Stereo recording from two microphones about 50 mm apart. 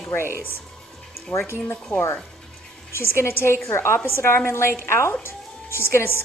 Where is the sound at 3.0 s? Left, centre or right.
Left.